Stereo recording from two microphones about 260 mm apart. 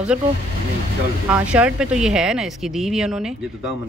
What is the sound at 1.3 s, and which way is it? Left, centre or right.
Speech, centre.